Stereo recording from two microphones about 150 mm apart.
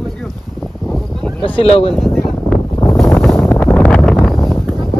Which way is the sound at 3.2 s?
Centre (ahead or behind).